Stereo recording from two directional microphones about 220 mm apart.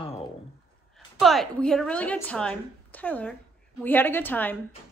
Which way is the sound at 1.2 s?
Centre (ahead or behind).